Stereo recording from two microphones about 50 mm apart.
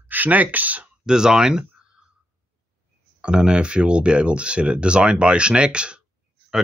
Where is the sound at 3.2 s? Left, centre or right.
Centre.